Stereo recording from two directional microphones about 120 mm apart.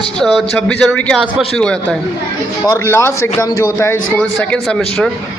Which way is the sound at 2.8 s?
20° left (ahead or behind).